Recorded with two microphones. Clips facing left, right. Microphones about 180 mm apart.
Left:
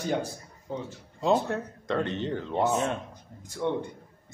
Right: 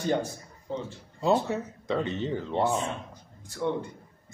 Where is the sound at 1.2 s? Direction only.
5° right (ahead or behind).